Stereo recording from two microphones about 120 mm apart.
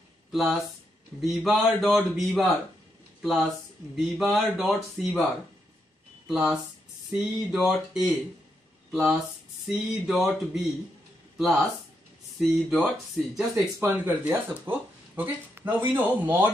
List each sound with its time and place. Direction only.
0.3 s a man's voice: centre (ahead or behind)
6.2 s a man's voice: 5° right (ahead or behind)
9.7 s a man's voice: 5° right (ahead or behind)
13.7 s speech: 20° right (ahead or behind)